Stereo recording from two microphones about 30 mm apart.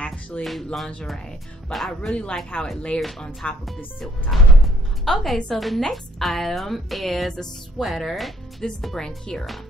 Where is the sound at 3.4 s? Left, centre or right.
Left.